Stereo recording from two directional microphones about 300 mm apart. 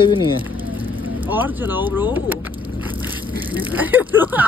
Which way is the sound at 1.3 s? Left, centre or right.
Centre.